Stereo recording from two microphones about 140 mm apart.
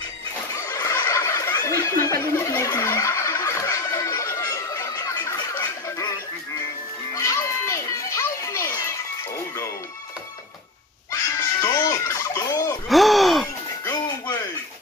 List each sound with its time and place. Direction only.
0.6 s fowl: 20° left (ahead or behind)
7.2 s children playing: 20° left (ahead or behind)
11.1 s fowl: 20° left (ahead or behind)
12.8 s gasp: centre (ahead or behind)